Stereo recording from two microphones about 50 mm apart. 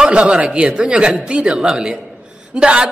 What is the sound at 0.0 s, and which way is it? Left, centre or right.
A man's voice, centre.